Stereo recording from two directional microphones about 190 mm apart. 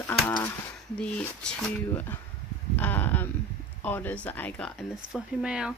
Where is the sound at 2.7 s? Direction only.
10° left (ahead or behind).